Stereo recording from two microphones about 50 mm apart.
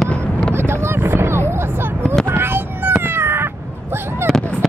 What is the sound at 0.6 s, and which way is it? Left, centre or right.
Vehicle, right.